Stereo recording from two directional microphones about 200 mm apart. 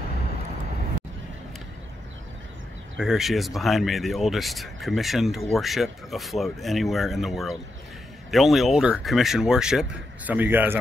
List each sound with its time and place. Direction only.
3.0 s speech: centre (ahead or behind)